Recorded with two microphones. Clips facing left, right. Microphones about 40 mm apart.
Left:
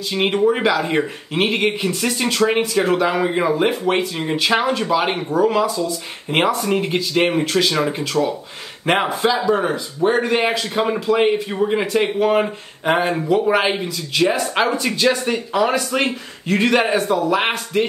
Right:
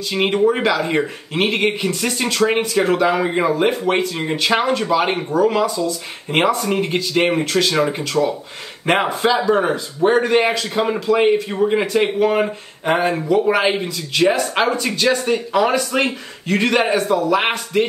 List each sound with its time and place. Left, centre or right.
0.1 s speech: centre
7.7 s speech: centre
9.6 s speech: centre
10.2 s speech: centre
15.0 s speech: centre
15.5 s speech: centre
17.4 s speech: centre